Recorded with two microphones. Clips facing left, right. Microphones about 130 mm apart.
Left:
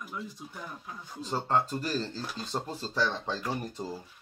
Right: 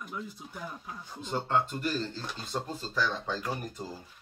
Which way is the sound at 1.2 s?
35° left (ahead or behind).